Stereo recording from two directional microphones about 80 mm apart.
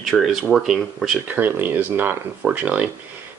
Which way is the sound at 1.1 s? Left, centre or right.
Right.